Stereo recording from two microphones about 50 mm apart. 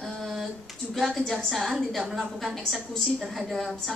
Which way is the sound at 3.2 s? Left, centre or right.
Centre.